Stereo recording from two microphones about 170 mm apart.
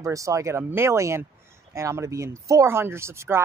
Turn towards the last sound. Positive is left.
turn(degrees=-15)  # may be behind; listen again after turning